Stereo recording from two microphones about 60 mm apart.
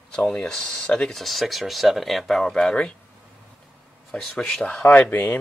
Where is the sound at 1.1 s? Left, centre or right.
Centre.